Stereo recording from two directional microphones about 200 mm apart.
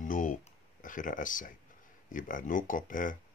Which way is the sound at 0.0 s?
40° left (ahead or behind).